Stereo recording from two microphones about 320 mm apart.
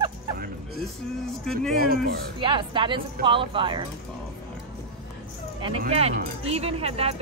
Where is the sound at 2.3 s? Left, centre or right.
Centre.